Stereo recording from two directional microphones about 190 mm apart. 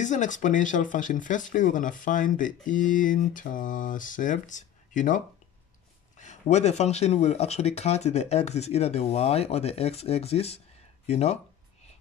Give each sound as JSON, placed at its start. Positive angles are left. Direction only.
{"t": 0.0, "sound": "speech", "side_deg": 40}